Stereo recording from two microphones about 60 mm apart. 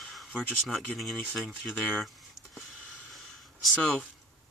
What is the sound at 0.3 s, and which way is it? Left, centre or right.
Speech, centre.